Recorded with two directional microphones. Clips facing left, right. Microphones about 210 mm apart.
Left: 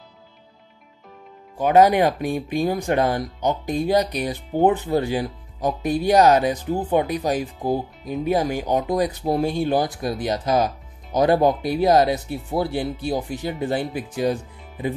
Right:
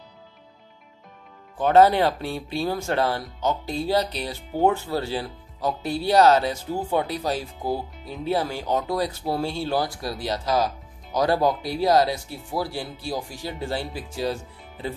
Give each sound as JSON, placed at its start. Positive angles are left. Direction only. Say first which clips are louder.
{"t": 1.6, "sound": "speech", "louder": "left 1 dB", "side_deg": 15}